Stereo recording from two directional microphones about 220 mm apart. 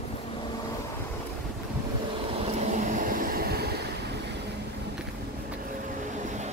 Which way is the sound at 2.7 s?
40° right (ahead or behind).